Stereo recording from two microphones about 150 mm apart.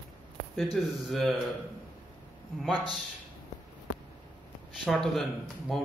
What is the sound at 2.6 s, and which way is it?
Speech, centre (ahead or behind).